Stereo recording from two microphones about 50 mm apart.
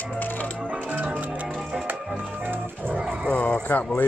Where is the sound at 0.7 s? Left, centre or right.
Right.